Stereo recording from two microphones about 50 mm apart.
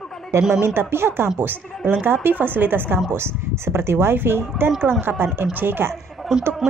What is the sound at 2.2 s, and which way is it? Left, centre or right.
Speech, right.